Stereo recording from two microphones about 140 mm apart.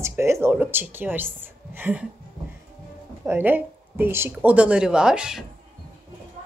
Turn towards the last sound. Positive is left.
turn(degrees=-5)  # may be behind; listen again after turning